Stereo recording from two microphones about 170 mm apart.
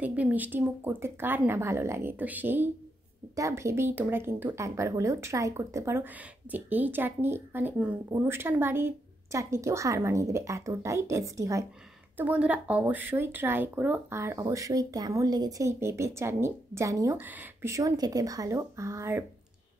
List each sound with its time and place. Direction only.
0.0 s speech: 10° right (ahead or behind)
12.2 s speech: 10° right (ahead or behind)